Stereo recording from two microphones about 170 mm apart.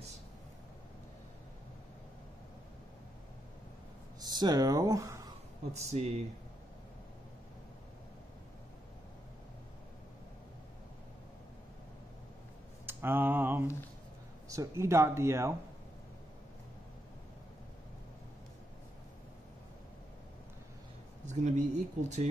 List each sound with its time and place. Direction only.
4.2 s speech: 25° right (ahead or behind)
5.7 s speech: 40° right (ahead or behind)
12.8 s a sound: 10° right (ahead or behind)
14.8 s speech: 15° right (ahead or behind)
21.3 s speech: 45° right (ahead or behind)